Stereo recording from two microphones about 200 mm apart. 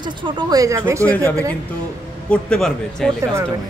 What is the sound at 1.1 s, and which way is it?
A man's voice, 10° left (ahead or behind).